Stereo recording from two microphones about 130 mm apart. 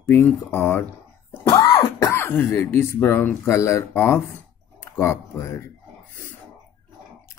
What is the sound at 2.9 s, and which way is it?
Speech, 15° left (ahead or behind).